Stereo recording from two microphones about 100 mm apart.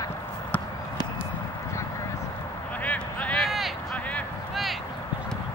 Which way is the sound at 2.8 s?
15° left (ahead or behind).